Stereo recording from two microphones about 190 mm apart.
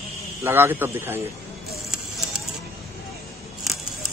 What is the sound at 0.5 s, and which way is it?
Speech, 10° right (ahead or behind).